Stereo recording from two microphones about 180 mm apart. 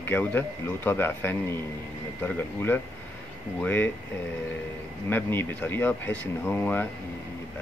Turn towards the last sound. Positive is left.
turn(degrees=10)  # may be behind; listen again after turning